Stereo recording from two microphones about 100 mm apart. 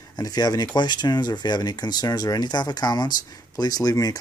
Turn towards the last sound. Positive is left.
turn(degrees=35)  # may be behind; listen again after turning